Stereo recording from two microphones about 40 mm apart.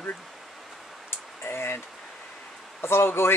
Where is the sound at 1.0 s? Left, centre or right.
Left.